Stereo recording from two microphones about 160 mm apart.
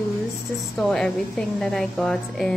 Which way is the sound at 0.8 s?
5° left (ahead or behind).